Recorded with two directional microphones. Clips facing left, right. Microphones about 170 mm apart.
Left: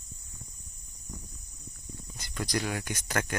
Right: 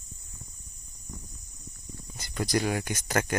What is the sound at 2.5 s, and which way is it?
Speech, 35° right (ahead or behind).